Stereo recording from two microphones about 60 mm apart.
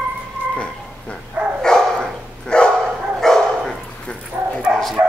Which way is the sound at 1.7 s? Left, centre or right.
Centre.